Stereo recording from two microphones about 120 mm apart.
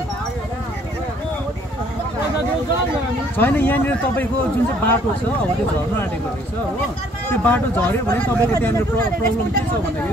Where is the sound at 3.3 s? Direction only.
15° left (ahead or behind).